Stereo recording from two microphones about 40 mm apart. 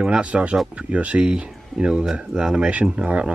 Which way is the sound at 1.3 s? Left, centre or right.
Right.